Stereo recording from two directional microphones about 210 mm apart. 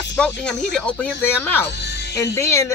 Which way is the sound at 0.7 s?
5° left (ahead or behind).